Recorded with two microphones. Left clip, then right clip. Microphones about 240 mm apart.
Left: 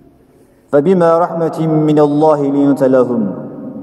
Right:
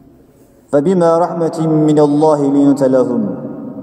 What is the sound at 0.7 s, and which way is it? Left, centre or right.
A man's voice, left.